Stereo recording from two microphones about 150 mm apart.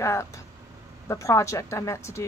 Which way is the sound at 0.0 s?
20° left (ahead or behind).